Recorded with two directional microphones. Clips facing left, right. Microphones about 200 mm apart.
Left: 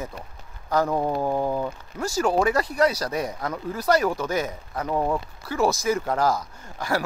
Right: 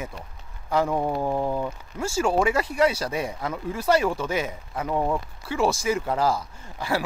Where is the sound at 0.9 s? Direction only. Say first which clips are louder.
Left 1 dB; 5° left (ahead or behind).